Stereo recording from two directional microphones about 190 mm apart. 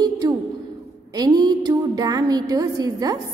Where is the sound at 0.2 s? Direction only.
20° right (ahead or behind).